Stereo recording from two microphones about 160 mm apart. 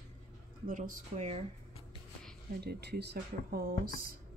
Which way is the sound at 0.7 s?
55° right (ahead or behind).